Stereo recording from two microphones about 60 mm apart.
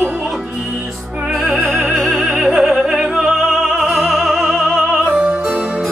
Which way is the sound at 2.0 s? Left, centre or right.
Centre.